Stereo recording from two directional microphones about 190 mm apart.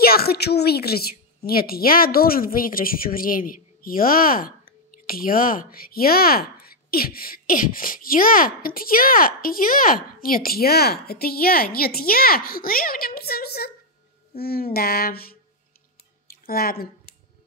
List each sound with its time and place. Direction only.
0.0 s a woman's voice: 55° left (ahead or behind)